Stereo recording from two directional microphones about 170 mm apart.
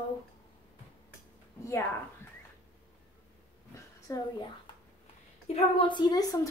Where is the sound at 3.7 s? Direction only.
20° left (ahead or behind).